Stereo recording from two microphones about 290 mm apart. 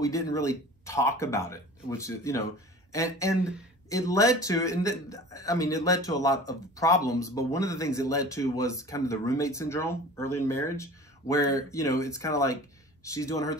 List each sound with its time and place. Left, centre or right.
0.0 s a man's voice: centre